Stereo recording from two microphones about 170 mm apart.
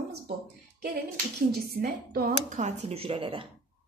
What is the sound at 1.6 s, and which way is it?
Speech, 65° right (ahead or behind).